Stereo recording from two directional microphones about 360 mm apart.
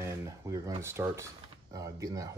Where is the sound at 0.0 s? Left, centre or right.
Centre.